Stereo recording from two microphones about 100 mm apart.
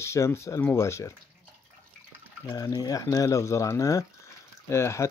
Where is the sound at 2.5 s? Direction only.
40° left (ahead or behind).